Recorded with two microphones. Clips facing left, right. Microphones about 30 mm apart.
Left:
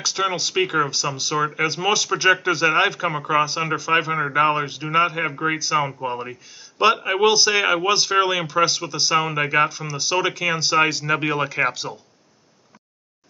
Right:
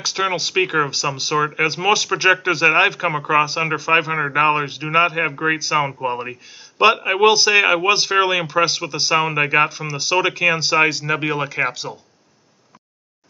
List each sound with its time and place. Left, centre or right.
0.0 s speech: centre